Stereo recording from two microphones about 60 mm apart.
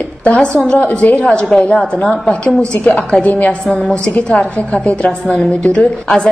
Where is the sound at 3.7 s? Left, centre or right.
Centre.